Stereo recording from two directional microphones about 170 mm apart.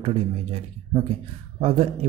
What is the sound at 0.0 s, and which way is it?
Speech, 35° right (ahead or behind).